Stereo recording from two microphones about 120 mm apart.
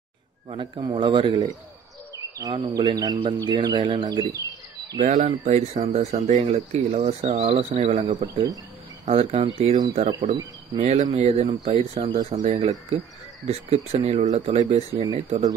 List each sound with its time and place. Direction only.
0.5 s speech: 45° right (ahead or behind)
2.7 s speech: 35° right (ahead or behind)
4.9 s speech: 85° right
7.5 s speech: 65° right (ahead or behind)
9.1 s speech: 55° right (ahead or behind)
9.6 s speech: 80° right
9.9 s speech: 60° right (ahead or behind)
11.4 s speech: 50° right (ahead or behind)
12.4 s speech: 60° right (ahead or behind)
15.2 s speech: 90° right